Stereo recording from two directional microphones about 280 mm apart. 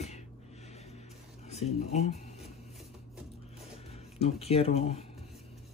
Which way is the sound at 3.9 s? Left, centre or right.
Left.